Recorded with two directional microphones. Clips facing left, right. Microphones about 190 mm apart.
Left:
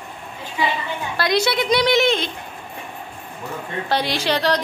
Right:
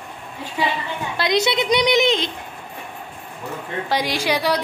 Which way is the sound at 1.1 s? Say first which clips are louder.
Even; 20° right (ahead or behind).